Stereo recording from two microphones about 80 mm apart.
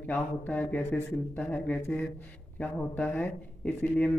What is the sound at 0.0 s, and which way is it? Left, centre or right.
Speech, centre.